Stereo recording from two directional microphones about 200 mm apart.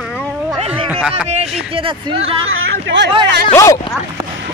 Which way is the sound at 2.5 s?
65° right (ahead or behind).